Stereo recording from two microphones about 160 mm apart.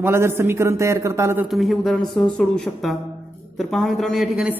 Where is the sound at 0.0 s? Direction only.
15° right (ahead or behind).